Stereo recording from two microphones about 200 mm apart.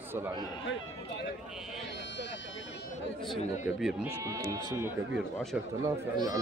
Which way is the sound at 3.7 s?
5° right (ahead or behind).